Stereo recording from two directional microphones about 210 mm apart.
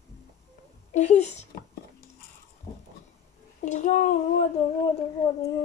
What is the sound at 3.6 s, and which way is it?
Speech, 35° left (ahead or behind).